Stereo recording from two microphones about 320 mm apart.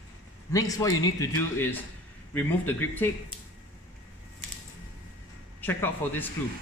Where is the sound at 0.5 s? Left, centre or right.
Centre.